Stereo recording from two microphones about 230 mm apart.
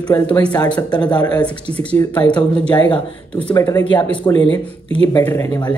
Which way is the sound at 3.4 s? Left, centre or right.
Centre.